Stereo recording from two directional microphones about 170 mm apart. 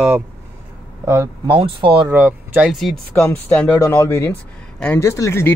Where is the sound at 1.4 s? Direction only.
30° right (ahead or behind).